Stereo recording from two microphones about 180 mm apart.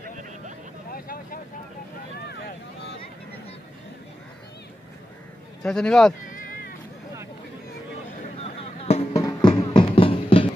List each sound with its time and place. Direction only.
0.9 s vehicle: 55° left (ahead or behind)
5.6 s speech: centre (ahead or behind)
6.2 s cat: 50° left (ahead or behind)
8.4 s a sound: 35° left (ahead or behind)
9.1 s music: 20° left (ahead or behind)